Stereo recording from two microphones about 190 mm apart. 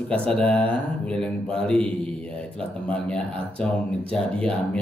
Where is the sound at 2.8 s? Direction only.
5° left (ahead or behind).